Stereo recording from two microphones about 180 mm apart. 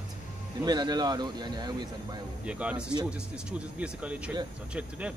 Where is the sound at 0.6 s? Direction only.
20° right (ahead or behind).